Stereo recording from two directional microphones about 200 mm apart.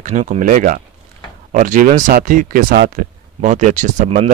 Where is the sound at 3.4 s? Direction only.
35° right (ahead or behind).